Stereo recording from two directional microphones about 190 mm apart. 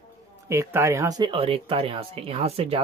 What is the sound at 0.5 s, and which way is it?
Speech, 15° right (ahead or behind).